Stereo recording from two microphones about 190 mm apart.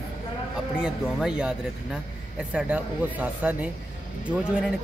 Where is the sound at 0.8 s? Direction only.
5° right (ahead or behind).